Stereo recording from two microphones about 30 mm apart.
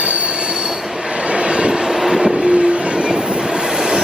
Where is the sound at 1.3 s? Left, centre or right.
Right.